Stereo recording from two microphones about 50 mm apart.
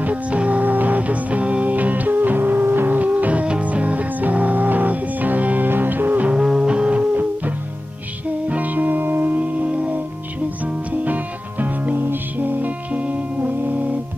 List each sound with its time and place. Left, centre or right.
0.0 s music: right
3.0 s music: right
6.2 s music: centre
8.5 s music: right
11.6 s music: right